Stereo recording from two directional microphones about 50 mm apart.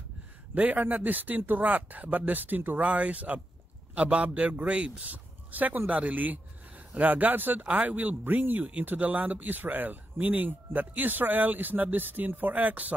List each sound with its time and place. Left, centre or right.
0.6 s a man's voice: right